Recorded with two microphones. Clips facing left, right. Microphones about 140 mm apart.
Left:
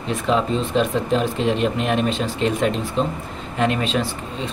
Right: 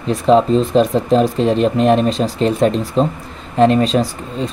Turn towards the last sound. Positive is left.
turn(degrees=-40)  # may be behind; listen again after turning